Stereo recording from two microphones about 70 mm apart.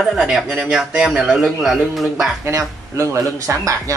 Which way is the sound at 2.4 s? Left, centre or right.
Right.